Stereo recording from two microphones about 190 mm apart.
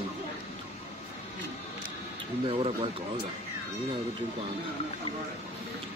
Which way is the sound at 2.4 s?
30° right (ahead or behind).